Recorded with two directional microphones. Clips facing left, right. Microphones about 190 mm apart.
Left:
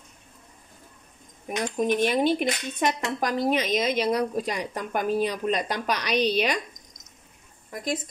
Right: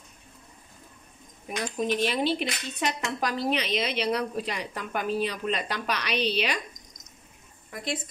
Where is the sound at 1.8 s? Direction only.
50° left (ahead or behind).